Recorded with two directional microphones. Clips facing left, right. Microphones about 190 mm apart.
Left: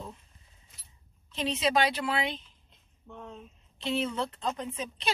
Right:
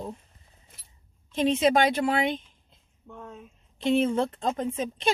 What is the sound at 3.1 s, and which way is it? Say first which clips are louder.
Speech: right 2 dB; 10° right (ahead or behind).